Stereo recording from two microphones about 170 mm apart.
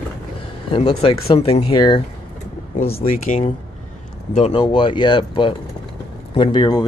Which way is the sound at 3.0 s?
50° left (ahead or behind).